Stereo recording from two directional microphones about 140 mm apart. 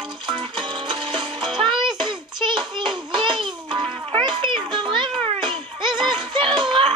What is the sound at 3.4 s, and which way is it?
Music, 35° right (ahead or behind).